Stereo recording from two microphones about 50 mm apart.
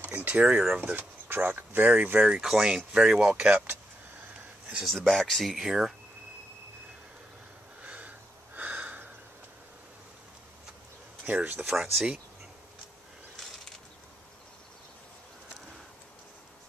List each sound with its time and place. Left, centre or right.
0.2 s speech: right
0.7 s speech: right
2.1 s speech: centre
4.8 s speech: centre
5.6 s speech: centre
7.8 s a sound: right
11.2 s speech: right
11.6 s speech: centre